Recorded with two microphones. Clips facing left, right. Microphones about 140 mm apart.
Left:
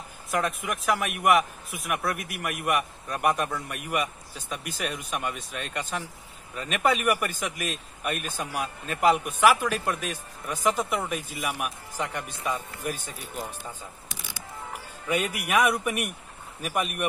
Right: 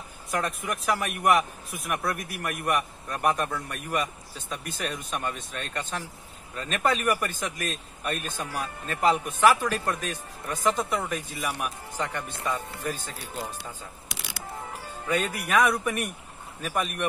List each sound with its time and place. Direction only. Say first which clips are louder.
0.3 s a man's voice: left 1 dB; centre (ahead or behind)
13.1 s speech: right 1 dB; 80° right
15.0 s a man's voice: even; 10° left (ahead or behind)